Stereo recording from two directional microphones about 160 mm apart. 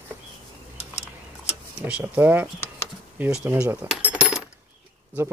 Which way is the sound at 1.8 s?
15° right (ahead or behind).